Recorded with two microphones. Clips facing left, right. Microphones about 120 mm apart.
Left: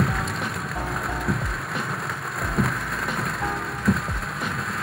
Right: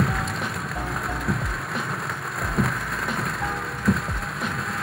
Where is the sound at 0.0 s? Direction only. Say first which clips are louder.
Even; centre (ahead or behind).